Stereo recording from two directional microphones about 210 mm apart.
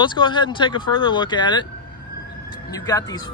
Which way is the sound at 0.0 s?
20° left (ahead or behind).